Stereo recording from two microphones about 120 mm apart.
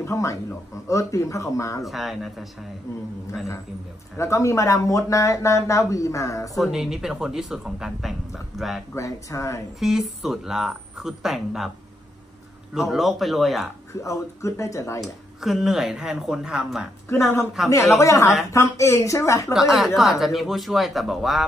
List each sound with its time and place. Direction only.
0.0 s a man's voice: 25° left (ahead or behind)
1.9 s speech: centre (ahead or behind)
4.2 s speech: 25° left (ahead or behind)
6.5 s speech: centre (ahead or behind)
8.9 s speech: 25° left (ahead or behind)
9.8 s speech: 5° right (ahead or behind)
12.7 s speech: centre (ahead or behind)
14.0 s speech: 25° left (ahead or behind)
15.4 s speech: centre (ahead or behind)
17.1 s speech: 20° left (ahead or behind)
19.5 s speech: centre (ahead or behind)